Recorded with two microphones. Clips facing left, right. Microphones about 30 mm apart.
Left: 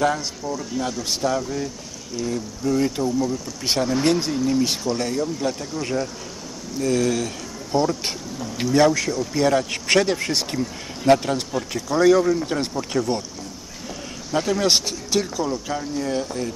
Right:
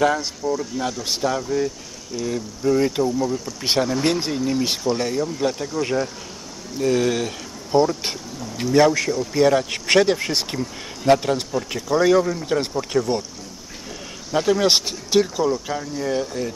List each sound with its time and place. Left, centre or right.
0.0 s speech: centre
6.8 s speech: right
8.6 s speech: centre
14.3 s speech: centre
15.4 s speech: centre